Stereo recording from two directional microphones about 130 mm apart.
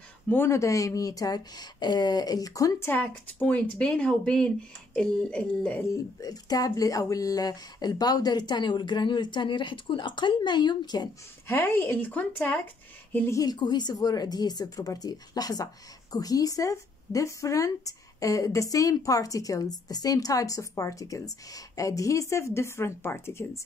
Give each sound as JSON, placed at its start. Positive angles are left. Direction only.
{"t": 0.3, "sound": "speech", "side_deg": 20}
{"t": 2.9, "sound": "speech", "side_deg": 15}
{"t": 6.2, "sound": "speech", "side_deg": 30}
{"t": 11.4, "sound": "speech", "side_deg": 20}
{"t": 13.1, "sound": "speech", "side_deg": 25}